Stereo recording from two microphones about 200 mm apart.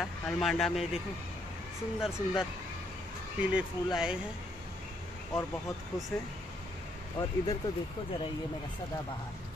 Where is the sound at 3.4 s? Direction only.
5° right (ahead or behind).